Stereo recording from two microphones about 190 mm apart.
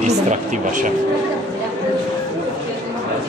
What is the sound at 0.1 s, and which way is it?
Speech, 40° right (ahead or behind).